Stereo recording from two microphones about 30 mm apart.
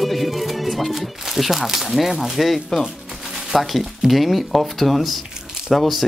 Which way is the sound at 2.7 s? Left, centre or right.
Centre.